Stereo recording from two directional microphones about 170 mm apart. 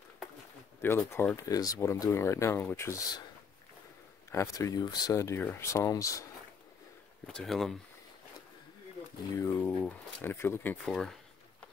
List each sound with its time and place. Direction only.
0.7 s speech: 15° left (ahead or behind)
4.3 s speech: 20° left (ahead or behind)
7.2 s speech: centre (ahead or behind)
9.4 s speech: 10° left (ahead or behind)